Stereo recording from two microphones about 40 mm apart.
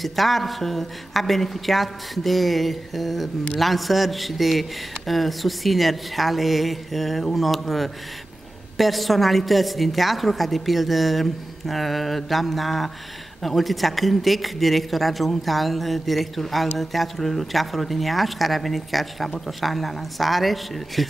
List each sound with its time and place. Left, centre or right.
0.0 s a man's voice: centre